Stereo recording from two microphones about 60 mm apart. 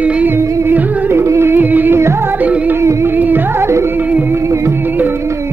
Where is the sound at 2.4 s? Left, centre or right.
Right.